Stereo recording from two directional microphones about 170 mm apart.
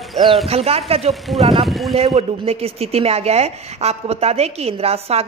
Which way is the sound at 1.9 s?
35° right (ahead or behind).